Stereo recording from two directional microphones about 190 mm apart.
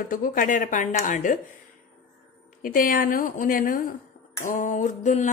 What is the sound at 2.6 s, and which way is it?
A woman's voice, 45° left (ahead or behind).